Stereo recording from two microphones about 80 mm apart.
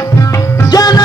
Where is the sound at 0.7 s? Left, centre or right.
Left.